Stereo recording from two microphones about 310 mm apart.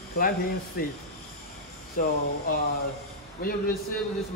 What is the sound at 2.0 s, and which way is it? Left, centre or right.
Speech, left.